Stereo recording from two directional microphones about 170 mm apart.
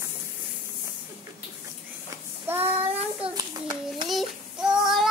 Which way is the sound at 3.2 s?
35° right (ahead or behind).